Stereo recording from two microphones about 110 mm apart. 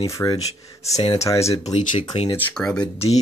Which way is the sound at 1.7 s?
65° left (ahead or behind).